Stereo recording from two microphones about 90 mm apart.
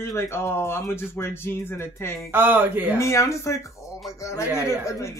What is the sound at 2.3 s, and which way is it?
Speech, 20° right (ahead or behind).